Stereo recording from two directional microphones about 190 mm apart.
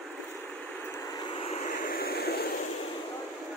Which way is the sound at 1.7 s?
50° left (ahead or behind).